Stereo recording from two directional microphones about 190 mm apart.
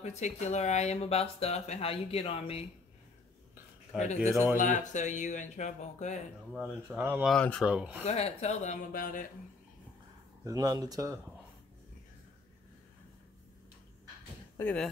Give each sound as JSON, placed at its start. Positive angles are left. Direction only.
{"t": 0.0, "sound": "speech", "side_deg": 35}
{"t": 3.9, "sound": "speech", "side_deg": -5}
{"t": 4.6, "sound": "speech", "side_deg": 40}
{"t": 6.5, "sound": "speech", "side_deg": -5}
{"t": 7.3, "sound": "speech", "side_deg": 5}
{"t": 8.0, "sound": "speech", "side_deg": 35}
{"t": 10.4, "sound": "speech", "side_deg": -20}
{"t": 14.6, "sound": "speech", "side_deg": 5}